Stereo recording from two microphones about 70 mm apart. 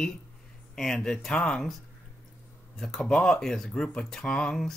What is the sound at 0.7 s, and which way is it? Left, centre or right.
Speech, centre.